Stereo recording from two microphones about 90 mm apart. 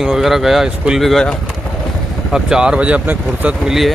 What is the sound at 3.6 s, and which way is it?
Speech, 5° right (ahead or behind).